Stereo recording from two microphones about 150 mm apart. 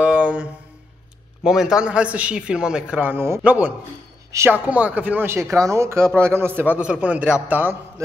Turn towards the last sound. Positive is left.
turn(degrees=-10)  # may be behind; listen again after turning